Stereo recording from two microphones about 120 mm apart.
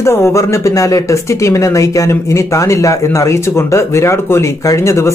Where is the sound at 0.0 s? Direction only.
25° left (ahead or behind).